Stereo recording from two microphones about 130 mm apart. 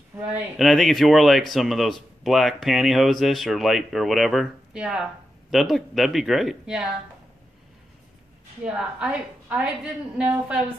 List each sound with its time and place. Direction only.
0.1 s speech: 15° right (ahead or behind)
0.6 s speech: centre (ahead or behind)
8.6 s a woman's voice: 5° right (ahead or behind)